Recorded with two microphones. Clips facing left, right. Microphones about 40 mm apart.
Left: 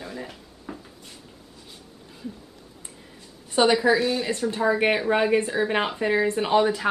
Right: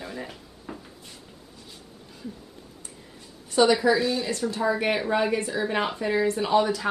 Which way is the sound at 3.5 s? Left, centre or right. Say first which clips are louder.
Left 1 dB; left.